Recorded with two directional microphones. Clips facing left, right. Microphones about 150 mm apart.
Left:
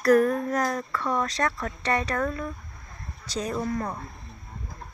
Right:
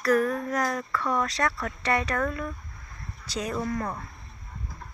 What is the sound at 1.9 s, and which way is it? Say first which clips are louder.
Speech: even; 35° left (ahead or behind).